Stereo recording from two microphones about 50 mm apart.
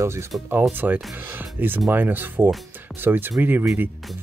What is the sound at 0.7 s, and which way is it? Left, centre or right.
Speech, right.